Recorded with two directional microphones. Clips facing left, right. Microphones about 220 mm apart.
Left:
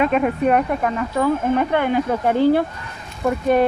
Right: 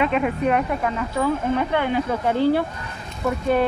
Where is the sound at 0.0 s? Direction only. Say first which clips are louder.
Left 3 dB; 45° left (ahead or behind).